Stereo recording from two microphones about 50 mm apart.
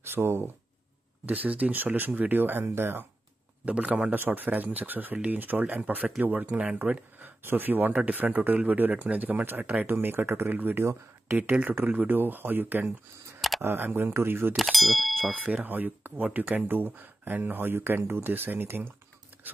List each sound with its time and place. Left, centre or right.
0.1 s speech: right
1.2 s speech: right
3.6 s speech: right
4.1 s speech: right
10.5 s speech: right
10.8 s speech: right
11.8 s speech: right
14.6 s speech: centre
15.4 s speech: right